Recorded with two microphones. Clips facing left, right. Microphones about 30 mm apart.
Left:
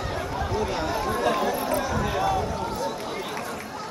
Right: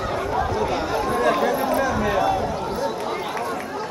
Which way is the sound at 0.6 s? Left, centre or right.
Centre.